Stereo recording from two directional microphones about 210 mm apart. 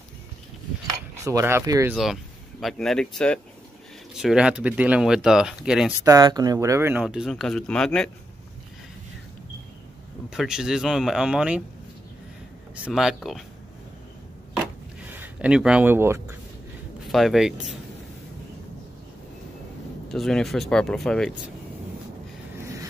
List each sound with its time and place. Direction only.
1.1 s speech: 15° right (ahead or behind)
2.6 s speech: centre (ahead or behind)
6.0 s speech: 20° right (ahead or behind); by 8.1 s 5° left (ahead or behind)
10.3 s speech: centre (ahead or behind)
12.7 s speech: 5° right (ahead or behind)
15.0 s speech: 5° right (ahead or behind)
17.1 s speech: centre (ahead or behind)
20.1 s speech: centre (ahead or behind)